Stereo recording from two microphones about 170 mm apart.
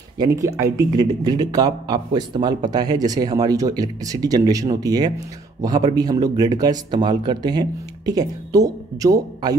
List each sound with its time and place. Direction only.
0.2 s speech: 20° right (ahead or behind)